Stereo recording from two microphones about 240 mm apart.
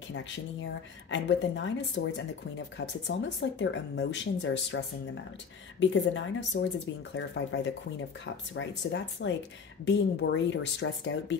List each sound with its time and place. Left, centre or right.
1.1 s speech: left